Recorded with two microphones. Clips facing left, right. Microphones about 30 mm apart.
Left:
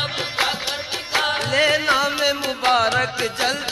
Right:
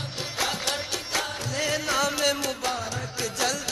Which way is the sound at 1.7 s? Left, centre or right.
Left.